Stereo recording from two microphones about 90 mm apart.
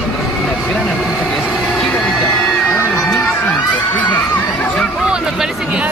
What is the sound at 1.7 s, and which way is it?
Bagpipes, 10° left (ahead or behind).